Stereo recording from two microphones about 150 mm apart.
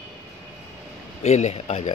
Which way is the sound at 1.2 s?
50° left (ahead or behind).